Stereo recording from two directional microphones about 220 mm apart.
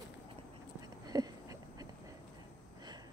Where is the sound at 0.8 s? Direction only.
15° right (ahead or behind).